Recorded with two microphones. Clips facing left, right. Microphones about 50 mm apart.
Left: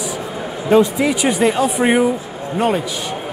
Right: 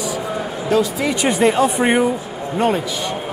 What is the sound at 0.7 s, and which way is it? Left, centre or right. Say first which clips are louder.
Speech: left 5 dB; left.